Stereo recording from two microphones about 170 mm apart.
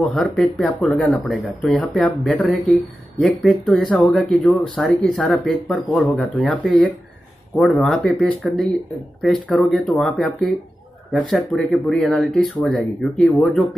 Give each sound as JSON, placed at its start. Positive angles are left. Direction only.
{"t": 0.0, "sound": "speech", "side_deg": 0}